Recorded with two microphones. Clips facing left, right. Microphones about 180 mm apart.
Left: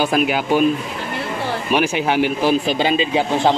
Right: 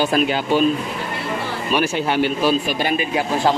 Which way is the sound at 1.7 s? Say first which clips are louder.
Left 1 dB; 15° left (ahead or behind).